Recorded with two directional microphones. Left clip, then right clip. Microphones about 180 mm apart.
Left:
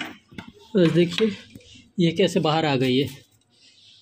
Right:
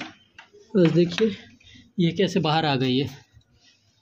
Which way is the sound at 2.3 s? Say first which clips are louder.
Left 1 dB; 30° right (ahead or behind).